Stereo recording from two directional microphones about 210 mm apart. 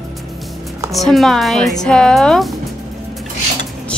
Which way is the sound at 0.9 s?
Centre (ahead or behind).